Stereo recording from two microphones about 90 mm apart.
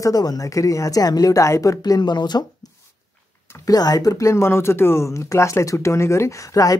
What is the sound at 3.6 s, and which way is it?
Speech, 45° left (ahead or behind).